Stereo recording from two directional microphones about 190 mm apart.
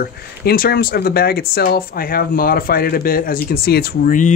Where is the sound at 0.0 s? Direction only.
55° left (ahead or behind).